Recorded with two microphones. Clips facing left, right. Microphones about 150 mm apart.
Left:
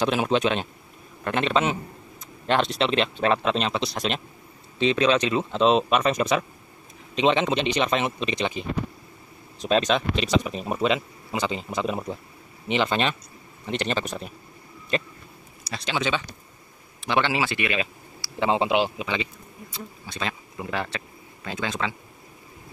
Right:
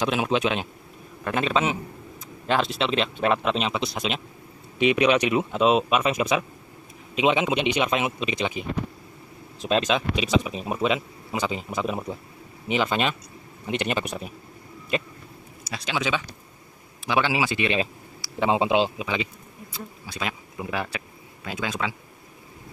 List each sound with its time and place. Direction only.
0.0 s speech: centre (ahead or behind)
4.7 s speech: 15° right (ahead or behind)
15.6 s speech: 5° right (ahead or behind)